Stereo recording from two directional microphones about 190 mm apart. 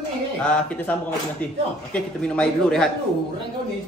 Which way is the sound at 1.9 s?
5° left (ahead or behind).